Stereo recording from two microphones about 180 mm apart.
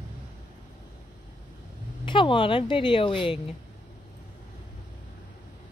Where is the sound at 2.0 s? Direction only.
25° left (ahead or behind).